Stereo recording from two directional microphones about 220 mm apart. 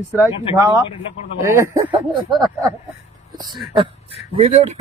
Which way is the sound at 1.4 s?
15° right (ahead or behind).